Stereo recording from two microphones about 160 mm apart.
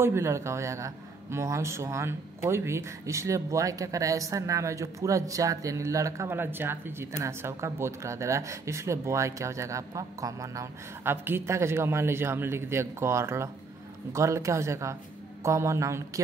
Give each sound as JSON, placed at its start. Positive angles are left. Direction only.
{"t": 0.0, "sound": "a man's voice", "side_deg": -15}